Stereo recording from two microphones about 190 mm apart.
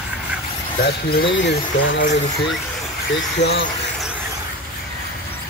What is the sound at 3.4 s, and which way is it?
Speech, 65° left (ahead or behind).